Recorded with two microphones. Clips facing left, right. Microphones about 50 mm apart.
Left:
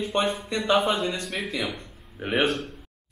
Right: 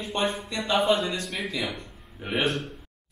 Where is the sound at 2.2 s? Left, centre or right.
Centre.